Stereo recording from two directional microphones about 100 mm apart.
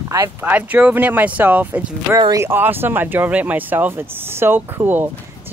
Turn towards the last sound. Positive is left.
turn(degrees=-20)  # may be behind; listen again after turning